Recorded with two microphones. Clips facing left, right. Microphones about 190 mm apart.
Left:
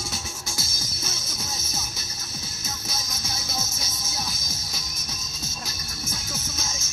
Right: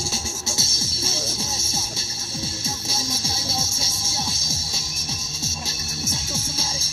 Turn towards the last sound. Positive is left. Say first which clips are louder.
# right 4 dB
turn(degrees=-30)  # may be behind; listen again after turning